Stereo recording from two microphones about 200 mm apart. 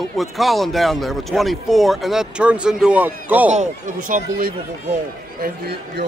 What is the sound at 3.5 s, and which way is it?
Speech, 40° right (ahead or behind).